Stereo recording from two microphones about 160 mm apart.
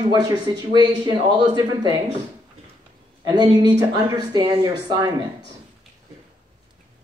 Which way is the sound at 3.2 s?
25° right (ahead or behind).